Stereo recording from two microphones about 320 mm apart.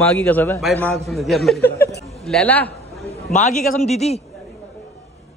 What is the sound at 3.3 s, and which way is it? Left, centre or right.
Speech, left.